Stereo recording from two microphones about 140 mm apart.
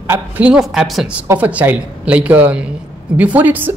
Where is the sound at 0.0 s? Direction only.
15° right (ahead or behind).